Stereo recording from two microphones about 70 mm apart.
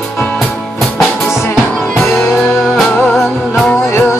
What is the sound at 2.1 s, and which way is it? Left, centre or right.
Music, left.